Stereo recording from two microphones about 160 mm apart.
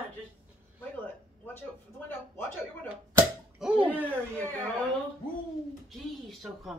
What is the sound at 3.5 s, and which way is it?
Speech, 5° right (ahead or behind).